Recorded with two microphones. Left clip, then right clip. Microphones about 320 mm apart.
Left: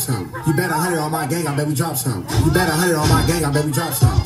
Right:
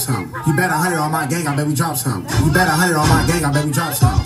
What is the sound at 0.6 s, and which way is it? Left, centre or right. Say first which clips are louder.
Speech: right 4 dB; centre.